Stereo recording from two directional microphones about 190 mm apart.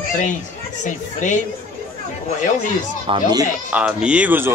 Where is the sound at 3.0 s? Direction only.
25° right (ahead or behind).